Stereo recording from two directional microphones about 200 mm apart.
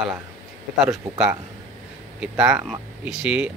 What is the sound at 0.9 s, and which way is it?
Speech, 5° right (ahead or behind).